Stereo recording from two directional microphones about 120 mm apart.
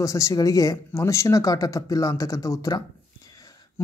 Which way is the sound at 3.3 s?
30° left (ahead or behind).